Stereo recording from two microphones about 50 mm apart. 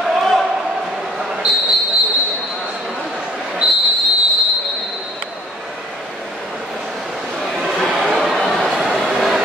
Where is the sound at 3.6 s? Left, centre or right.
Centre.